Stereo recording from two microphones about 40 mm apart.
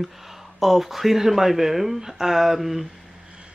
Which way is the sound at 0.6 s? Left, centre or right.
Centre.